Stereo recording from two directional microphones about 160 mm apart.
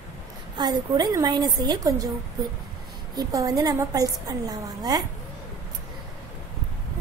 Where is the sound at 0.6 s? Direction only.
25° right (ahead or behind).